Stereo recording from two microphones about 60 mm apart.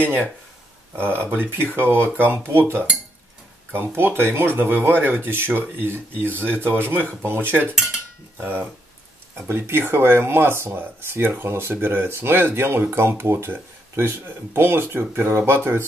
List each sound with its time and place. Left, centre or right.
0.0 s speech: right
9.5 s speech: right